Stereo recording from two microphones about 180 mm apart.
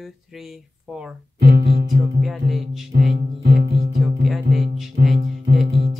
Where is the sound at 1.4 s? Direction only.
60° right (ahead or behind).